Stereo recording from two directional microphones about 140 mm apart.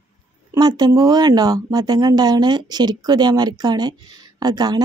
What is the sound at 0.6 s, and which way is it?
Speech, 30° right (ahead or behind).